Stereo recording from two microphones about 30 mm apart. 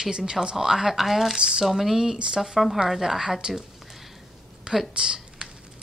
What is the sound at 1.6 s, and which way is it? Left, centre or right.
Speech, centre.